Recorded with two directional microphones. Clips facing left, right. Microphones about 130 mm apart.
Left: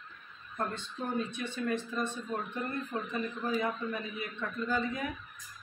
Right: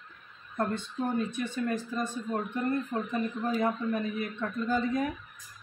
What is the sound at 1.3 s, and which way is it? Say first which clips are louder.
Speech: right 3 dB; 50° right (ahead or behind).